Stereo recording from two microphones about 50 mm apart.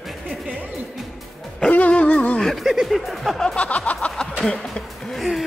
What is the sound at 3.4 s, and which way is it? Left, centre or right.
Music, left.